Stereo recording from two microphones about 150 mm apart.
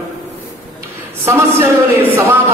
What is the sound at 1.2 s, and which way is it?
A man's voice, 20° right (ahead or behind).